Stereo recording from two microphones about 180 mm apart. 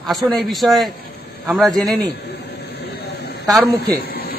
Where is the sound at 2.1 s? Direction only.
70° left (ahead or behind).